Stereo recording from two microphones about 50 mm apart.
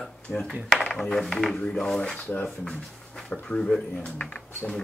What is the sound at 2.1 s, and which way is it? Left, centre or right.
Speech, left.